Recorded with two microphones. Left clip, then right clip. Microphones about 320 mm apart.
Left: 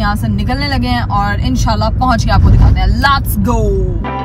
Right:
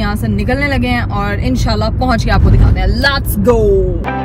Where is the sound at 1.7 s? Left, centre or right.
Left.